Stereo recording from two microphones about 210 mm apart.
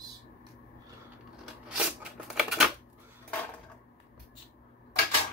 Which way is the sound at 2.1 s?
Centre (ahead or behind).